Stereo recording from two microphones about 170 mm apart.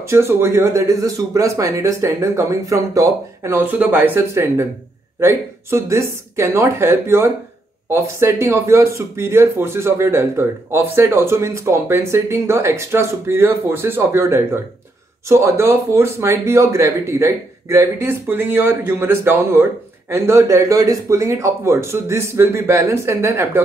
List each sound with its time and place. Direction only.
0.0 s speech: 15° right (ahead or behind)